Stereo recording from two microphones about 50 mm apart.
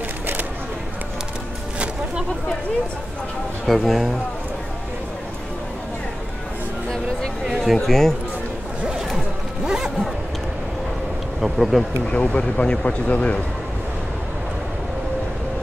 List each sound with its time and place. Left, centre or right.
3.6 s a man's voice: centre
7.4 s speech: centre
8.8 s zipper: centre
9.7 s a sound: centre
11.4 s a man's voice: centre
12.1 s speech: left